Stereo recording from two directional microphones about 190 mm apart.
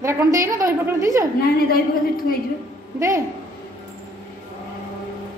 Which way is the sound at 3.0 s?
15° right (ahead or behind).